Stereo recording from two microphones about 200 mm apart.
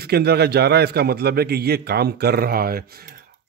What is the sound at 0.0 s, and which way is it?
A man's voice, 55° right (ahead or behind).